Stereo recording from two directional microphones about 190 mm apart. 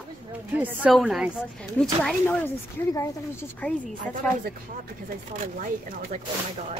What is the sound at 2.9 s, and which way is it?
Speech, 15° left (ahead or behind).